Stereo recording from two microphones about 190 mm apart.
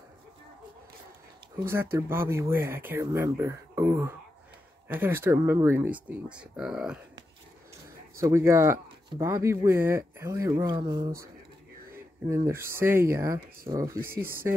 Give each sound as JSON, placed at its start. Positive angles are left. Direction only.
{"t": 1.6, "sound": "speech", "side_deg": -15}
{"t": 8.2, "sound": "speech", "side_deg": -15}
{"t": 12.3, "sound": "speech", "side_deg": -15}